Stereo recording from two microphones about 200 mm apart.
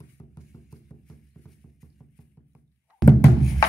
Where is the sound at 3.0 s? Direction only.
Centre (ahead or behind).